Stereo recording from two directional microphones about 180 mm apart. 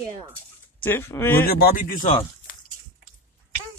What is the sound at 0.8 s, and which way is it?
Speech, 10° left (ahead or behind).